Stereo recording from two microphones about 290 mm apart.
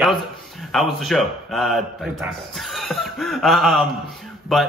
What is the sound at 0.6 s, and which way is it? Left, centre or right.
A man's voice, centre.